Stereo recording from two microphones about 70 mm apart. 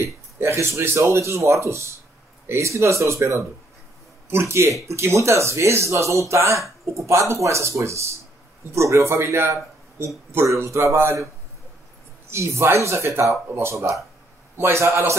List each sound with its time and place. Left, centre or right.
0.0 s speech: right
12.3 s speech: right